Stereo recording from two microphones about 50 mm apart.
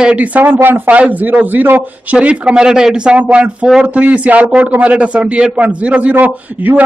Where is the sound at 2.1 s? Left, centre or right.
Right.